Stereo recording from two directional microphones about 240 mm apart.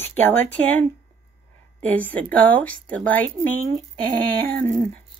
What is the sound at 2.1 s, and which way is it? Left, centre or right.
A woman's voice, centre.